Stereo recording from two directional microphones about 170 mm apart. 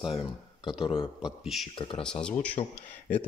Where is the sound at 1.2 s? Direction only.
Centre (ahead or behind).